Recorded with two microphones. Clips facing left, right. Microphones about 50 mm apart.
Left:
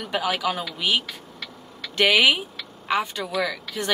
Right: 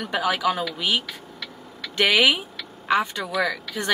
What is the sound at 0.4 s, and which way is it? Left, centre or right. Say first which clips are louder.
Speech: right 3 dB; centre.